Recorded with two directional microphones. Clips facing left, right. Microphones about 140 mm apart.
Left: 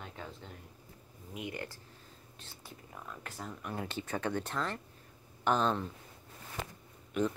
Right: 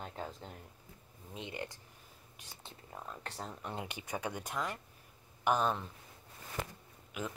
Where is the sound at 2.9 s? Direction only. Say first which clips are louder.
Right 2 dB; 30° right (ahead or behind).